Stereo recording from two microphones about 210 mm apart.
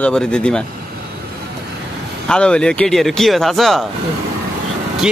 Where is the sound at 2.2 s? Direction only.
5° left (ahead or behind).